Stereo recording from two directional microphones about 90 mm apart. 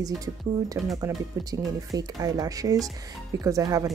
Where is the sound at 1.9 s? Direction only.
40° right (ahead or behind).